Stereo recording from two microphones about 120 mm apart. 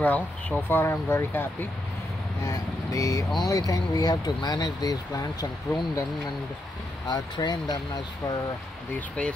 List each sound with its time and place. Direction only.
0.0 s speech: 15° left (ahead or behind)
2.4 s speech: 30° left (ahead or behind)
7.1 s speech: 35° left (ahead or behind)
8.9 s speech: 10° left (ahead or behind)